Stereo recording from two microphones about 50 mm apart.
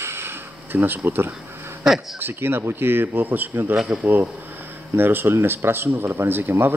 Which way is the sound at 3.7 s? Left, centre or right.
Centre.